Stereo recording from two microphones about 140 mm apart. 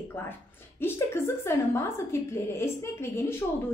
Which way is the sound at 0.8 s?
15° left (ahead or behind).